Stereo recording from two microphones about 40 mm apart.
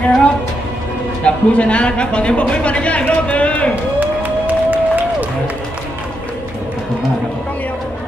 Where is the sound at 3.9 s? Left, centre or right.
Right.